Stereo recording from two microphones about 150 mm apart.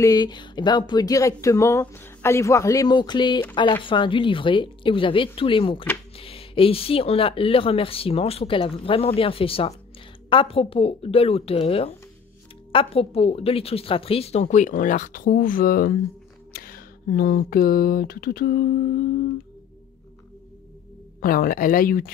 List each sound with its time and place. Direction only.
0.0 s a woman's voice: 25° left (ahead or behind); by 18.7 s 80° left
21.2 s speech: 70° left (ahead or behind)